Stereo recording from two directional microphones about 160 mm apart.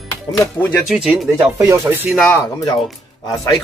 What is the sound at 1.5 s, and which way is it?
Speech, 20° right (ahead or behind).